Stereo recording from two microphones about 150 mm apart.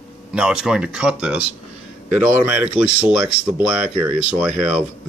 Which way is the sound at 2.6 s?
10° right (ahead or behind).